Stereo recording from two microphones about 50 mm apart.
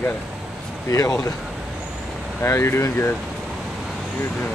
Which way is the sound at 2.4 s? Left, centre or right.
Left.